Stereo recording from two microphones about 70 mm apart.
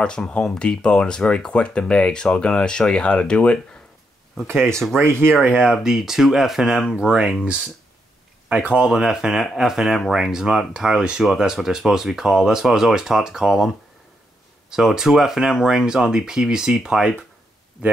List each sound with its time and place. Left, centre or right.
0.0 s speech: centre
4.4 s speech: centre
4.9 s speech: right
5.6 s speech: centre
8.5 s speech: centre
14.7 s speech: centre